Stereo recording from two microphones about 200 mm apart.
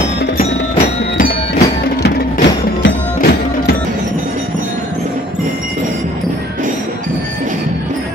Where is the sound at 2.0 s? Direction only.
55° left (ahead or behind).